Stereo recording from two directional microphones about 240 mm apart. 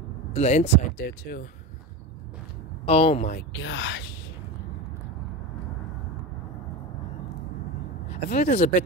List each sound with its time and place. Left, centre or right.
0.3 s speech: left
2.8 s speech: left
3.3 s speech: left
8.1 s speech: left